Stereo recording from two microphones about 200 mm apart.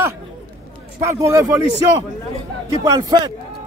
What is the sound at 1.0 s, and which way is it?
Speech, 15° right (ahead or behind).